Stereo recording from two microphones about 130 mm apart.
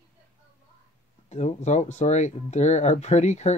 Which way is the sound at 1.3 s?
60° left (ahead or behind).